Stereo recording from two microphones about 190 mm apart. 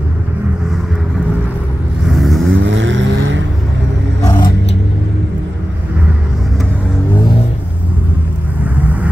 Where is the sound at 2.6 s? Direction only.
80° right.